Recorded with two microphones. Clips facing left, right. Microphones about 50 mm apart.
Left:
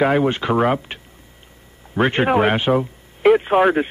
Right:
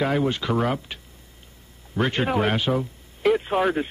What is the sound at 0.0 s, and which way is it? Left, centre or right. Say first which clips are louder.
Speech: left 6 dB; left.